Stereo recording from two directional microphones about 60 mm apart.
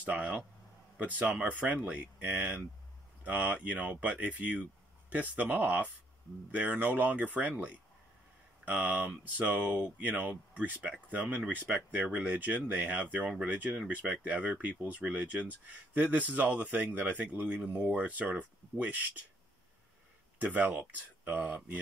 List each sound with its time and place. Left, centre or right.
0.0 s speech: right
8.6 s speech: right
15.4 s speech: right
20.3 s speech: right